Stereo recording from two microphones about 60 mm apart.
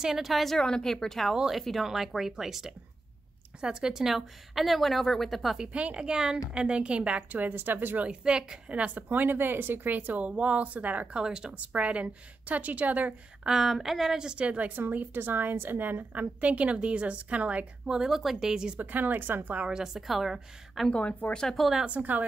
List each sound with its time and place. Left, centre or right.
0.0 s a woman's voice: centre
0.6 s speech: centre
1.3 s a woman's voice: centre
5.7 s a woman's voice: right
8.1 s a woman's voice: centre
11.1 s a woman's voice: centre
13.4 s a woman's voice: centre
14.8 s a woman's voice: right
17.9 s a woman's voice: centre
18.8 s speech: right
19.7 s a woman's voice: centre
20.9 s speech: left
21.5 s a woman's voice: centre
21.8 s a woman's voice: right